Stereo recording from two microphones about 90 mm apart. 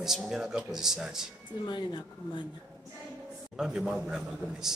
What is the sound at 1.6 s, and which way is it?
Speech, 55° left (ahead or behind).